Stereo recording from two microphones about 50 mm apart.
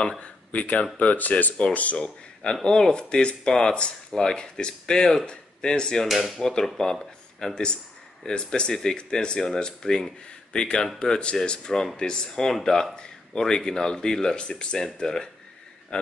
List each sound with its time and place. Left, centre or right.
0.5 s speech: left
2.0 s speech: centre
6.0 s speech: centre
6.4 s speech: centre